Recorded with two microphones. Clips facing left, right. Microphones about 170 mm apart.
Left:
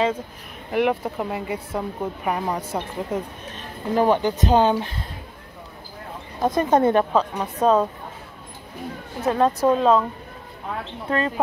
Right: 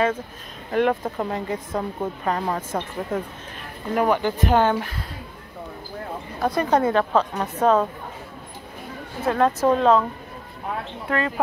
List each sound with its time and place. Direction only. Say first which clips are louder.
0.7 s a woman's voice: even; 10° left (ahead or behind)
3.9 s speech: left 2 dB; 30° left (ahead or behind)
6.4 s speech: left 2 dB; 20° left (ahead or behind)
7.1 s a woman's voice: even; 10° left (ahead or behind)
9.2 s a woman's voice: left 1 dB; 15° left (ahead or behind)
11.1 s speech: left 1 dB; 30° left (ahead or behind)